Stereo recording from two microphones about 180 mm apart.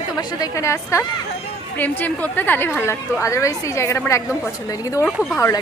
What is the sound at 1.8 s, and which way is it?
A woman's voice, 10° left (ahead or behind).